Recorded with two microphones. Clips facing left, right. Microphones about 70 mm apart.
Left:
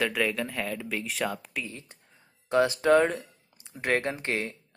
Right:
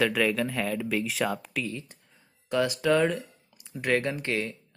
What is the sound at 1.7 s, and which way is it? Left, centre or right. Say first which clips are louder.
Speech: right 7 dB; left.